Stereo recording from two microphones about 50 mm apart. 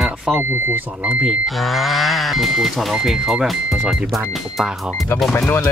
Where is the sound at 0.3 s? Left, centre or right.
Right.